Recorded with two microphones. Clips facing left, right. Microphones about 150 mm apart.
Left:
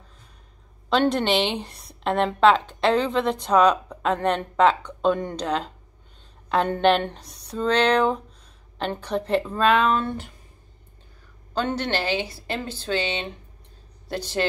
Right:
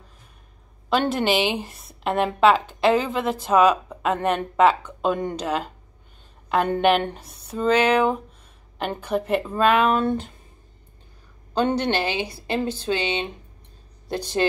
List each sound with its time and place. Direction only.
0.8 s a woman's voice: 5° right (ahead or behind)
11.5 s a woman's voice: 15° right (ahead or behind)